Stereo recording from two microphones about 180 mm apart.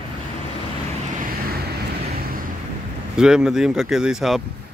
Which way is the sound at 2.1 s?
55° right (ahead or behind).